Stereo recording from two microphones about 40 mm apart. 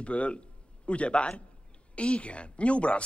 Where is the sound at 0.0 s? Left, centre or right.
Left.